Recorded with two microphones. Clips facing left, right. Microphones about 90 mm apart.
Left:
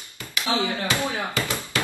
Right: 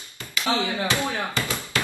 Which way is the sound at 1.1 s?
15° left (ahead or behind).